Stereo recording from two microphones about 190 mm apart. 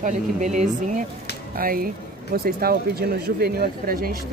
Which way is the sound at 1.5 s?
50° right (ahead or behind).